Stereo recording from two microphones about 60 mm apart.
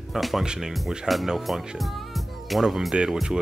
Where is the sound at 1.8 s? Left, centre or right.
Centre.